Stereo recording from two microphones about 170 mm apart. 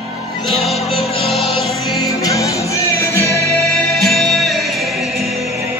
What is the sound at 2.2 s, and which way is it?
Music, 20° left (ahead or behind).